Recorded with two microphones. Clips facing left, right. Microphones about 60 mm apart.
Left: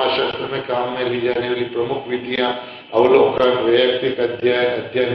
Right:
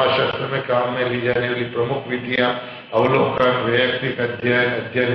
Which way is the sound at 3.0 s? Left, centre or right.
Centre.